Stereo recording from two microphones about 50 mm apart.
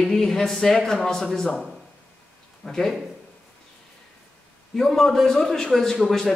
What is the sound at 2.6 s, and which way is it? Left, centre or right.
Speech, centre.